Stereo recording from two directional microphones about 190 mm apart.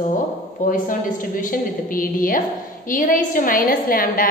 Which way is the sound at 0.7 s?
45° left (ahead or behind).